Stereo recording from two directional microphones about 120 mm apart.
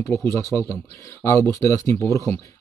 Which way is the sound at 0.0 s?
20° left (ahead or behind).